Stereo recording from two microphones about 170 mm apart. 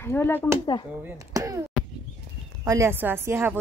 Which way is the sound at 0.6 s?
25° left (ahead or behind).